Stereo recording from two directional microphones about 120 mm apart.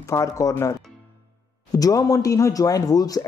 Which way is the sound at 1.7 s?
30° left (ahead or behind).